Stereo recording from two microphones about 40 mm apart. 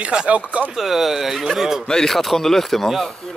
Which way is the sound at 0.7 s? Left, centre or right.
Centre.